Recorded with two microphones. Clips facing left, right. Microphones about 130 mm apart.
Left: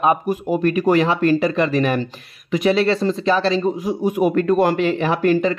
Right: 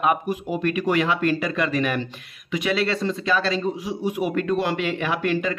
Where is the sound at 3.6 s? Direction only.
45° left (ahead or behind).